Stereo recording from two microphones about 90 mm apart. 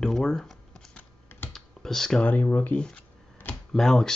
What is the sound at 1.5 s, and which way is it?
Computer keyboard, 5° left (ahead or behind).